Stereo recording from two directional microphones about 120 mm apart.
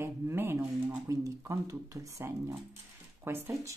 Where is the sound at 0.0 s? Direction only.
20° right (ahead or behind).